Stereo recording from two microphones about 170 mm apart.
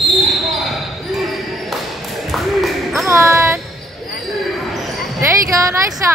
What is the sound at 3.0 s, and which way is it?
Music, 15° right (ahead or behind).